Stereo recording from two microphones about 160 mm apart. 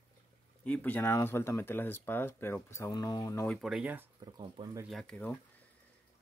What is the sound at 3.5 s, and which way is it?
Speech, centre (ahead or behind).